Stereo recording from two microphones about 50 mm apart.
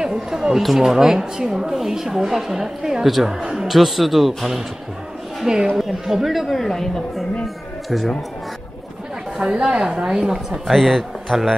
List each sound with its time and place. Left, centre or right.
0.0 s a woman's voice: centre
9.4 s speech: centre
10.7 s a woman's voice: centre